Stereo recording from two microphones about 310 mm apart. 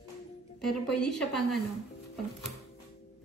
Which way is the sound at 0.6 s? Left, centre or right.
Centre.